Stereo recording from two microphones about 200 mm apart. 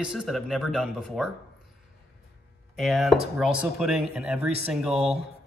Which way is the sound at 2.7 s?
Centre (ahead or behind).